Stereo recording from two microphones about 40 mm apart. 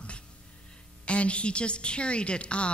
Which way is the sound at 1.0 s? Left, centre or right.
Left.